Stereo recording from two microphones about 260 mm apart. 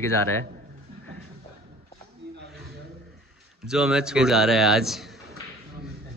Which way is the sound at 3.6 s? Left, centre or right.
Centre.